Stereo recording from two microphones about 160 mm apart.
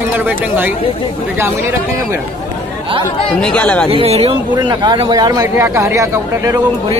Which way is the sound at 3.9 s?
40° right (ahead or behind).